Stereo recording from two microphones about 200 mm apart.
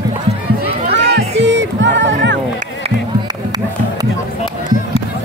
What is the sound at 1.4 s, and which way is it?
Music, 65° right (ahead or behind).